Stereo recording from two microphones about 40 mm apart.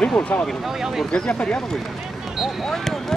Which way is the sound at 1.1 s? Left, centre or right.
Left.